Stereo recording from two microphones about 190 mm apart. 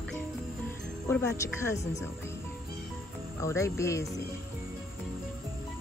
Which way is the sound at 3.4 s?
15° left (ahead or behind).